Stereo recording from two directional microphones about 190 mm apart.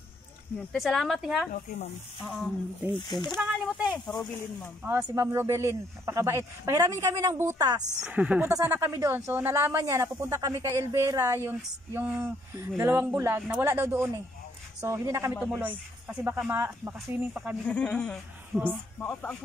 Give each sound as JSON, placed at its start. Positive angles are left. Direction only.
{"t": 0.7, "sound": "speech", "side_deg": 0}
{"t": 2.9, "sound": "speech", "side_deg": 25}
{"t": 3.3, "sound": "speech", "side_deg": -5}
{"t": 8.0, "sound": "speech", "side_deg": -5}
{"t": 17.6, "sound": "speech", "side_deg": 5}